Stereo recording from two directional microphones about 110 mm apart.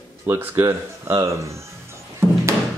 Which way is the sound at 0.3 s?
20° right (ahead or behind).